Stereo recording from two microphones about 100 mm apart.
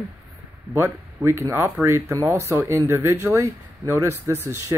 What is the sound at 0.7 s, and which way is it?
Speech, 25° right (ahead or behind).